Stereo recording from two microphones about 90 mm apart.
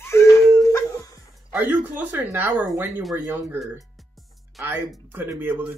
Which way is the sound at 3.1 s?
20° right (ahead or behind).